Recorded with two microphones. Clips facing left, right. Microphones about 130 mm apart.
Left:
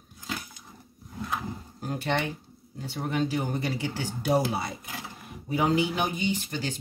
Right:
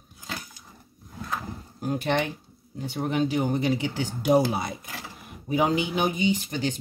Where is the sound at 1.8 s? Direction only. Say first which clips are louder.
Right 4 dB; 15° right (ahead or behind).